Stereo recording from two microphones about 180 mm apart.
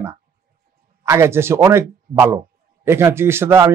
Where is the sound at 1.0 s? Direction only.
15° right (ahead or behind).